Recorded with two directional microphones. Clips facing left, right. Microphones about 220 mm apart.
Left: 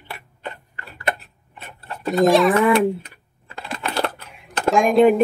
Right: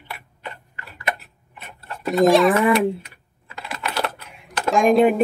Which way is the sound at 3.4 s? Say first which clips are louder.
Left 2 dB; 30° left (ahead or behind).